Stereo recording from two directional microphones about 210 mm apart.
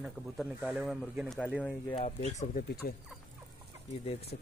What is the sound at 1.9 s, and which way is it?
Speech, 30° left (ahead or behind).